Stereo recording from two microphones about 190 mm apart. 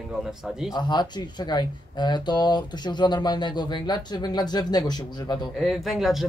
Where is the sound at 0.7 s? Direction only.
25° left (ahead or behind).